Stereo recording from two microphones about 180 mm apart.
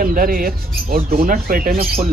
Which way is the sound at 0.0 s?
50° right (ahead or behind).